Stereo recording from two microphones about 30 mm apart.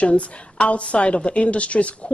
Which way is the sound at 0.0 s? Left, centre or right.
Left.